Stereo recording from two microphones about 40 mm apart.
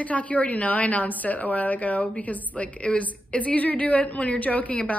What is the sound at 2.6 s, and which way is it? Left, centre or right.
A woman's voice, left.